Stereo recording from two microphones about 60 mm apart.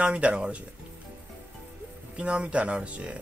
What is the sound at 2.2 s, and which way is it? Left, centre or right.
A man's voice, centre.